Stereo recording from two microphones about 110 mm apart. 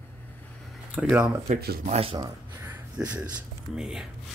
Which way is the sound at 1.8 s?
70° right (ahead or behind).